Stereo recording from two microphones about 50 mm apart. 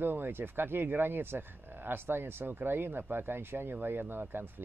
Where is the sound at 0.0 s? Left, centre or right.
Right.